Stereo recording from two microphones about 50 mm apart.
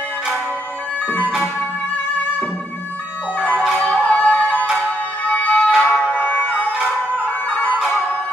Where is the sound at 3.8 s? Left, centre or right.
Left.